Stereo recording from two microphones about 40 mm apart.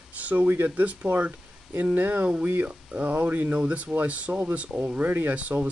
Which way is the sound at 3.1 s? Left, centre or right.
Right.